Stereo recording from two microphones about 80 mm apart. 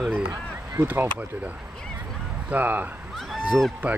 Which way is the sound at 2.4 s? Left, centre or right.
Right.